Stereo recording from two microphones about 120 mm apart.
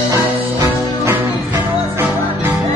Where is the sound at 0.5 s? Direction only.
25° right (ahead or behind).